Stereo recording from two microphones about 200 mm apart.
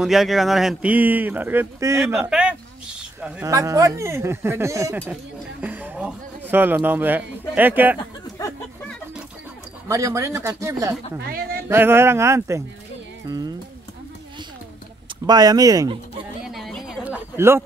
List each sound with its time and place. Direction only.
0.0 s a man's voice: centre (ahead or behind)
9.8 s speech: 15° right (ahead or behind)
11.1 s speech: 50° right (ahead or behind)
11.7 s speech: 10° right (ahead or behind)
15.2 s speech: 20° right (ahead or behind)
16.4 s a sound: centre (ahead or behind)